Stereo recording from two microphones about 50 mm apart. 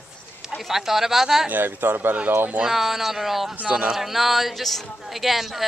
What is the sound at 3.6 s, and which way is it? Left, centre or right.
Speech, right.